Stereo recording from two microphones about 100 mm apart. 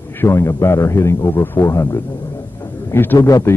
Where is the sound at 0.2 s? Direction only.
25° left (ahead or behind).